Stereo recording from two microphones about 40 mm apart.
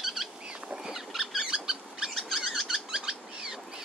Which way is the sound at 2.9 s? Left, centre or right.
Centre.